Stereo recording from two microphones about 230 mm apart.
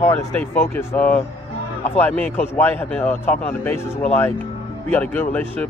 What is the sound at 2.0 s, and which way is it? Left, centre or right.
A man's voice, centre.